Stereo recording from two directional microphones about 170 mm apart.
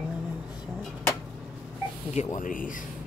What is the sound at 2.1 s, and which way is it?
Speech, 45° left (ahead or behind).